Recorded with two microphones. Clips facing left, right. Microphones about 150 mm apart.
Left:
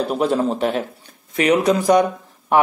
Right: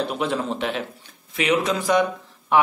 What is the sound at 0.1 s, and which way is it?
Speech, 40° left (ahead or behind).